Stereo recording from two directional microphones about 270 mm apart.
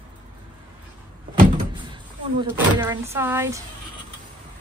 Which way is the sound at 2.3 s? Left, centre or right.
Centre.